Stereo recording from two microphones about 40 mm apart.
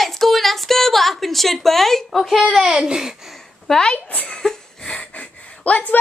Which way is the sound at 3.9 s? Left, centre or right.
Left.